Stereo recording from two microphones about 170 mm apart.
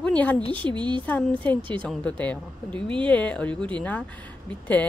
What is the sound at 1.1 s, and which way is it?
Speech, 10° left (ahead or behind).